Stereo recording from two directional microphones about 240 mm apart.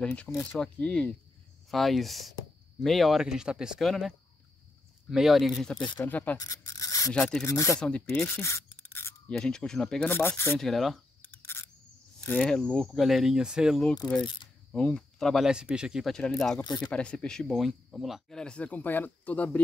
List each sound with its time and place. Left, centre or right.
0.0 s speech: centre
5.1 s speech: centre
5.9 s a sound: centre
7.1 s speech: centre
16.6 s a sound: centre
16.9 s speech: centre